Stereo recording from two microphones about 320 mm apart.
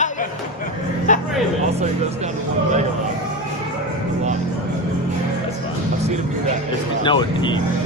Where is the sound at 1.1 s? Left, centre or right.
Left.